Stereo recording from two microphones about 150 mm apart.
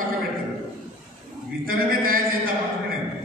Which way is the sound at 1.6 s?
70° right (ahead or behind).